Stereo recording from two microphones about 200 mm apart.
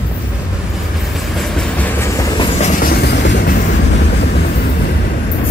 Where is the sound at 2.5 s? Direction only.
35° left (ahead or behind).